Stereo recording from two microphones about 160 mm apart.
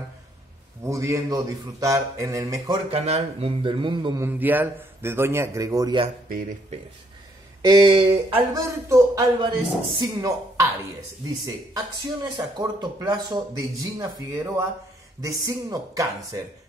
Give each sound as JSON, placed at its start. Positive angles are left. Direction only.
{"t": 0.8, "sound": "speech", "side_deg": -20}
{"t": 2.9, "sound": "speech", "side_deg": -40}
{"t": 4.2, "sound": "a man's voice", "side_deg": -10}
{"t": 7.6, "sound": "speech", "side_deg": -30}
{"t": 8.4, "sound": "speech", "side_deg": -20}